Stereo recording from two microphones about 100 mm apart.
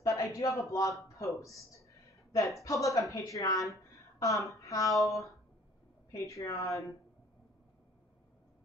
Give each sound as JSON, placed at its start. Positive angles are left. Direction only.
{"t": 0.0, "sound": "a man's voice", "side_deg": 35}